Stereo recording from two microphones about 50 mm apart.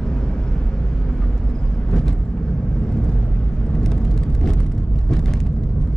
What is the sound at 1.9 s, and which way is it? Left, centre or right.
Vehicle, centre.